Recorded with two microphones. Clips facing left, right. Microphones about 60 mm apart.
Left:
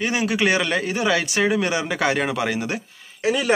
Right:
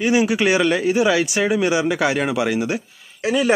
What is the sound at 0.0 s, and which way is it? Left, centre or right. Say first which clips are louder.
A man's voice: right 4 dB; centre.